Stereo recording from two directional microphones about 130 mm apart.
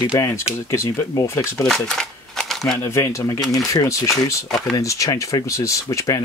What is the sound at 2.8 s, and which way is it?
Speech, 20° left (ahead or behind).